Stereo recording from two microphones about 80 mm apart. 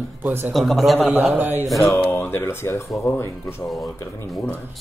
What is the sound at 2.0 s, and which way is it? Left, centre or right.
Speech, left.